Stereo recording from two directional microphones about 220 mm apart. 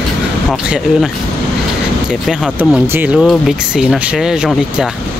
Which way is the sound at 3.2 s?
Centre (ahead or behind).